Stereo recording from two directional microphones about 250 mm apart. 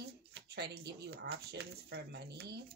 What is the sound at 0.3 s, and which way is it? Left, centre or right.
Speech, right.